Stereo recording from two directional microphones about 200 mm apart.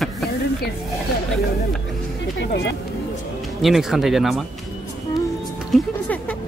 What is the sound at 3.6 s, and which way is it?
Speech, centre (ahead or behind).